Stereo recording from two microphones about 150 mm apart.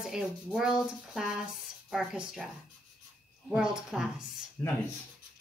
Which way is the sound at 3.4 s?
5° right (ahead or behind).